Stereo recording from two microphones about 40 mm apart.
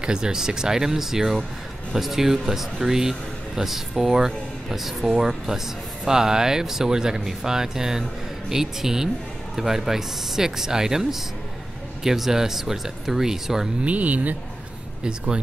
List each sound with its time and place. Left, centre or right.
0.0 s speech: centre
13.8 s speech: right